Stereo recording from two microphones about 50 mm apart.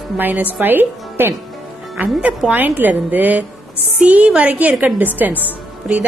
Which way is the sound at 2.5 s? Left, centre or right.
Right.